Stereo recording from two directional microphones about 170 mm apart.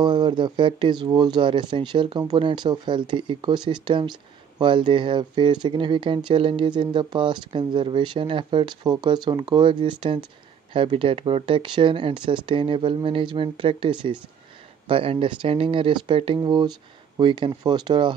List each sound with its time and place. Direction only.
0.0 s speech: 25° right (ahead or behind)